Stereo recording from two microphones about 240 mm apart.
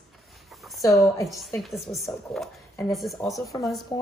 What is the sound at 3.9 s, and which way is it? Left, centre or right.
Speech, centre.